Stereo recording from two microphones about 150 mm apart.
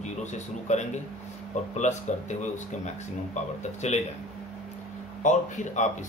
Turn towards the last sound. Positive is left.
turn(degrees=55)  # may be behind; listen again after turning